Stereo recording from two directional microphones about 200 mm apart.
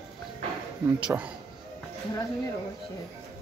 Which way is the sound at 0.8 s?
10° right (ahead or behind).